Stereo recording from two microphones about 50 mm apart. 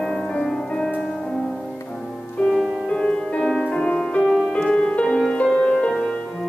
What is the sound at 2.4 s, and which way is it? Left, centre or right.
Music, centre.